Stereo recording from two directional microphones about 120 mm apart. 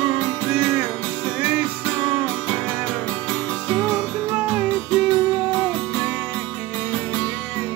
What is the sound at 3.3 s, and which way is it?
Music, 5° left (ahead or behind).